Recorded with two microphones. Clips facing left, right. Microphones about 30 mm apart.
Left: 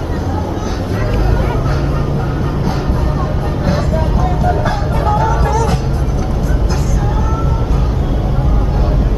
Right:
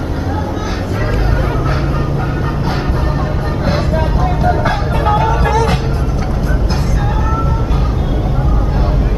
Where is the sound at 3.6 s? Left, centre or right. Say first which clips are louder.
Right 1 dB; right.